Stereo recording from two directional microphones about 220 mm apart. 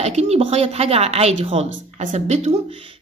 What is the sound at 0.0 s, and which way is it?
A woman's voice, 30° right (ahead or behind).